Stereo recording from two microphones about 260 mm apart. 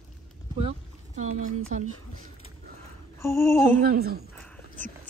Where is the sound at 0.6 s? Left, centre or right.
Right.